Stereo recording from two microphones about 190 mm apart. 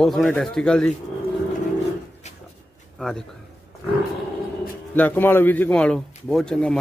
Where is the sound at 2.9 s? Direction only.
Centre (ahead or behind).